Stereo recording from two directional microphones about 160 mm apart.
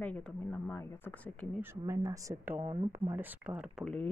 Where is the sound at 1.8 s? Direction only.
20° right (ahead or behind).